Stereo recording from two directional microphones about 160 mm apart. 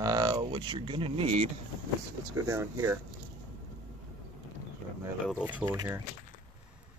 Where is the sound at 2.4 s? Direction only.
20° right (ahead or behind).